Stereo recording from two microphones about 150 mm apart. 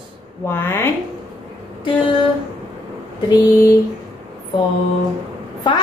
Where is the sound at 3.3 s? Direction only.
20° left (ahead or behind).